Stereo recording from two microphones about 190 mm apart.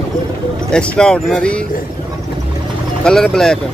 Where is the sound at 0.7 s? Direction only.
5° left (ahead or behind).